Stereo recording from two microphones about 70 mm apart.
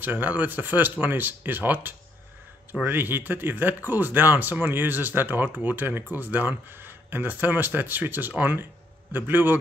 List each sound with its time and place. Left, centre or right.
0.0 s speech: right